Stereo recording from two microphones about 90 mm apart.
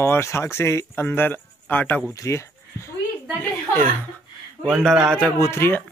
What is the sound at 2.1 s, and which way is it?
Speech, 35° left (ahead or behind).